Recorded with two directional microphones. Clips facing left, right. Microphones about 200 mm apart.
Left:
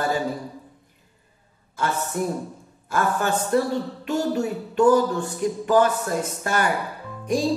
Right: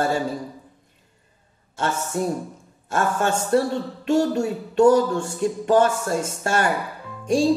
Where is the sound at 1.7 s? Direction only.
25° right (ahead or behind).